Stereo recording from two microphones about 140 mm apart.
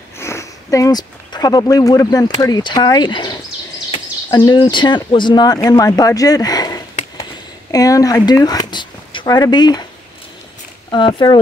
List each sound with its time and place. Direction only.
0.2 s speech: 20° left (ahead or behind)
10.9 s speech: 35° left (ahead or behind)